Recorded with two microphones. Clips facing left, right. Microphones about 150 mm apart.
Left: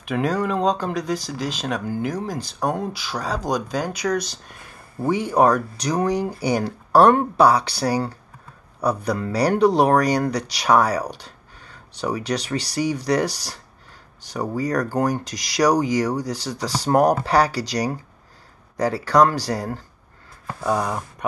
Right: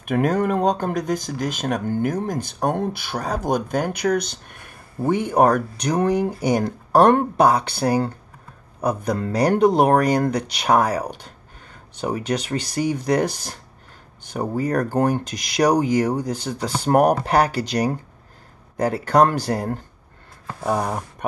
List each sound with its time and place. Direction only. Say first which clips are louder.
0.0 s speech: right 3 dB; 50° right (ahead or behind)